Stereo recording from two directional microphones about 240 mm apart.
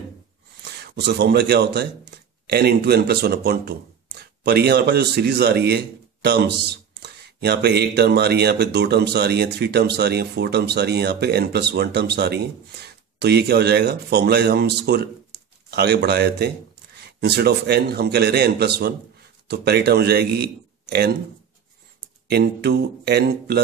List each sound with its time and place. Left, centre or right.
0.6 s speech: right
22.3 s speech: right